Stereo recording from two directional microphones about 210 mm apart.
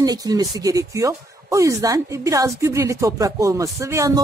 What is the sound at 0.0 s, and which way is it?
Speech, 15° right (ahead or behind).